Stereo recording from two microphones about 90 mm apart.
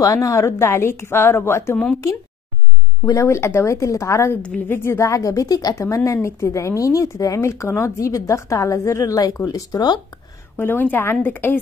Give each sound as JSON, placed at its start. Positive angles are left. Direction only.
{"t": 0.0, "sound": "a woman's voice", "side_deg": 40}
{"t": 3.1, "sound": "a woman's voice", "side_deg": 30}
{"t": 4.3, "sound": "a woman's voice", "side_deg": 15}
{"t": 4.6, "sound": "a woman's voice", "side_deg": 30}
{"t": 10.6, "sound": "a woman's voice", "side_deg": 20}